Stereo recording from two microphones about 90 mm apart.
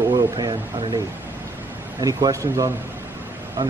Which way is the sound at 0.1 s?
45° right (ahead or behind).